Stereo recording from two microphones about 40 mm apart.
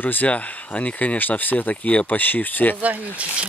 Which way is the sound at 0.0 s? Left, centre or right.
Left.